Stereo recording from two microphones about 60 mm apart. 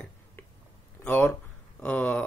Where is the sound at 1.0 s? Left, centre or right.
Left.